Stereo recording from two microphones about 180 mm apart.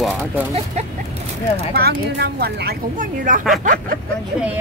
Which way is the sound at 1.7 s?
65° right (ahead or behind).